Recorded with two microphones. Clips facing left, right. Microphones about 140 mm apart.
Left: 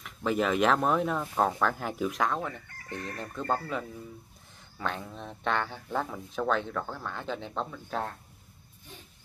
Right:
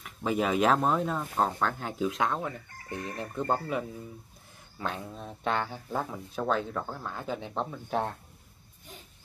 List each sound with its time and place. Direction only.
0.0 s speech: 5° right (ahead or behind)
2.0 s speech: 25° right (ahead or behind)
7.7 s speech: 25° right (ahead or behind)